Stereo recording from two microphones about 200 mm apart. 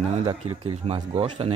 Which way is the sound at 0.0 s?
30° right (ahead or behind).